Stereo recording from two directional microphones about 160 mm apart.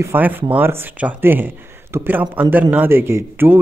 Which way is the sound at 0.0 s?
10° right (ahead or behind).